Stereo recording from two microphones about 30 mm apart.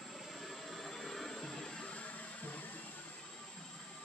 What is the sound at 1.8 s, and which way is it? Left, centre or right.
Music, left.